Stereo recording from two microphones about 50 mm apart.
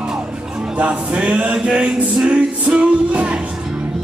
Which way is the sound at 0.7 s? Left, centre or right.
Right.